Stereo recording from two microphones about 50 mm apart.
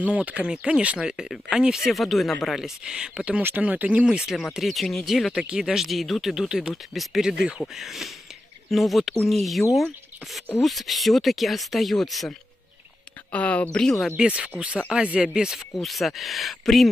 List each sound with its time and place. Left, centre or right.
0.0 s speech: right
0.5 s speech: centre
1.9 s speech: centre
3.6 s speech: right
4.0 s speech: centre
4.3 s speech: centre
6.2 s speech: centre
7.2 s speech: centre
7.6 s speech: centre
13.3 s speech: left
13.7 s speech: centre
14.1 s speech: right
15.7 s speech: centre